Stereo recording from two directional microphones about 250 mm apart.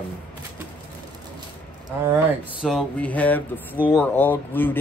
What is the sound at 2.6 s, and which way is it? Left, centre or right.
Speech, centre.